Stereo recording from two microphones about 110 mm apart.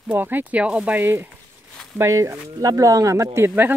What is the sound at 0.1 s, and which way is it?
Speech, 15° right (ahead or behind).